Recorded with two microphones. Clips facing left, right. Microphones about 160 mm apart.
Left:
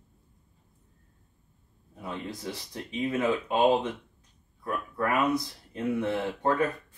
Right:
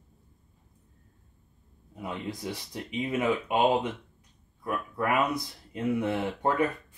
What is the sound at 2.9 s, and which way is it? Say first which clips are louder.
Speech: left 1 dB; 20° right (ahead or behind).